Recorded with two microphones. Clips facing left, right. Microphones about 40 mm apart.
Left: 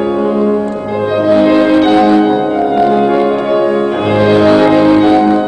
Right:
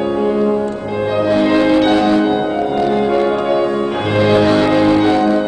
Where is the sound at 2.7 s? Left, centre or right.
Centre.